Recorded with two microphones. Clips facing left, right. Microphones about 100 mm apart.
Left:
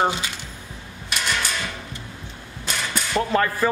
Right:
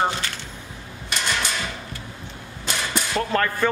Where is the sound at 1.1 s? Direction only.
5° left (ahead or behind).